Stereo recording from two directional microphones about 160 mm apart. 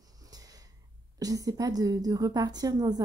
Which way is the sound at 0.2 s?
25° right (ahead or behind).